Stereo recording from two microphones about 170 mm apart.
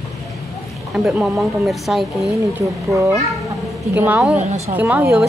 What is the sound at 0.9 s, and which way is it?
A woman's voice, 5° right (ahead or behind).